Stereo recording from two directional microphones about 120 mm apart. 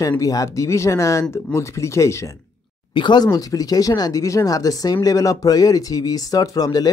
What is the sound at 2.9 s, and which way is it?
Speech, 40° left (ahead or behind).